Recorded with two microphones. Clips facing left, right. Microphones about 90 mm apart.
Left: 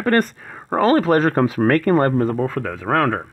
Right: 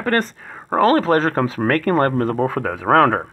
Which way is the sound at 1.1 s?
10° left (ahead or behind).